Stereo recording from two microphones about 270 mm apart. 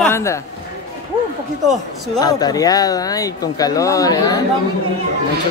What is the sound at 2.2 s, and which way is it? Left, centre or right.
Speech, centre.